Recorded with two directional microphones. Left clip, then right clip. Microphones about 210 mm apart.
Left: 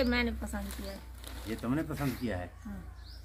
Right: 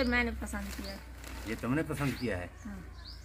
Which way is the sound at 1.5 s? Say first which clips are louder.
Right 1 dB; 25° right (ahead or behind).